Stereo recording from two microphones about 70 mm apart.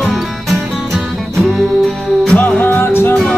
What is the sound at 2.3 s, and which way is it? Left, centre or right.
Music, left.